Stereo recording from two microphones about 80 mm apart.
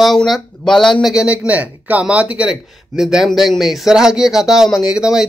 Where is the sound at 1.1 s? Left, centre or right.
Centre.